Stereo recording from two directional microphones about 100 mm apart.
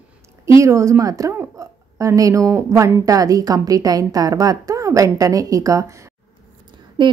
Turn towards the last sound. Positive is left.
turn(degrees=-50)  # may be behind; listen again after turning